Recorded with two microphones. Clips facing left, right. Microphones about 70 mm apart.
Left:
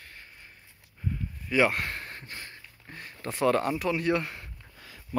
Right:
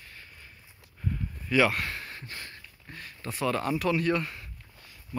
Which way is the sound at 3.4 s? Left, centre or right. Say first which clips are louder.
Left 4 dB; left.